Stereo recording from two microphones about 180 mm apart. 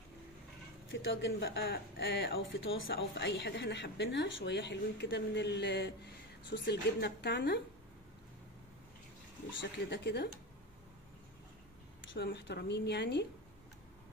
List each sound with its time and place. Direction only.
0.8 s speech: 90° left; by 7.6 s 65° left (ahead or behind)
9.6 s speech: 70° left (ahead or behind)
12.0 s speech: 85° left